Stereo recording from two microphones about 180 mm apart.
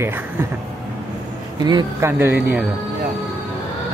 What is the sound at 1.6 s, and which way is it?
Speech, 20° right (ahead or behind).